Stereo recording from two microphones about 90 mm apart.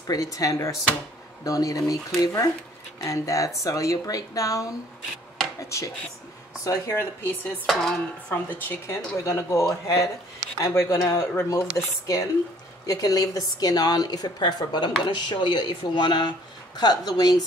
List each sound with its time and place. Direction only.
0.0 s speech: 40° left (ahead or behind)
7.6 s dishes: 5° left (ahead or behind)
8.3 s a woman's voice: 20° left (ahead or behind); by 17.4 s 45° left (ahead or behind)